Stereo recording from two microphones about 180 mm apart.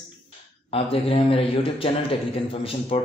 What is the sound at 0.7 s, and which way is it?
Speech, 30° left (ahead or behind).